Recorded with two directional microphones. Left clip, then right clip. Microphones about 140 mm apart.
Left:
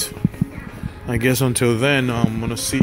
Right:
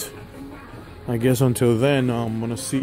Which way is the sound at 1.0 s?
30° right (ahead or behind).